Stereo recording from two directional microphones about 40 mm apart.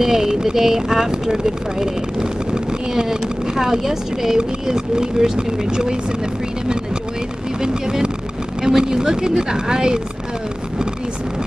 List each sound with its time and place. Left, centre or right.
0.0 s speech: centre
7.6 s speech: centre